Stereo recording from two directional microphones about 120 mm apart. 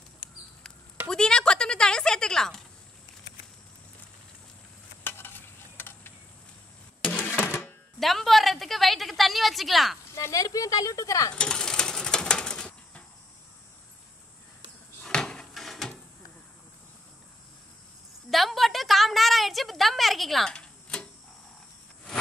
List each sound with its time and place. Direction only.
1.0 s chop: 5° left (ahead or behind)
5.0 s stir: 20° left (ahead or behind)
7.1 s cash register: 15° left (ahead or behind)
8.0 s a woman's voice: centre (ahead or behind)
10.1 s speech: 25° left (ahead or behind)
11.3 s a sound: 5° left (ahead or behind)
15.0 s drawer open or close: 5° left (ahead or behind)
18.3 s a sound: centre (ahead or behind)